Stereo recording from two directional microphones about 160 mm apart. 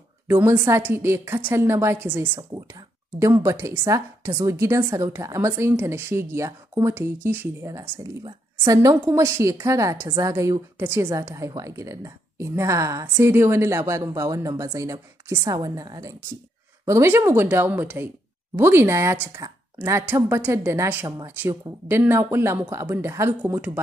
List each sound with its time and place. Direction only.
0.3 s a woman's voice: 15° right (ahead or behind)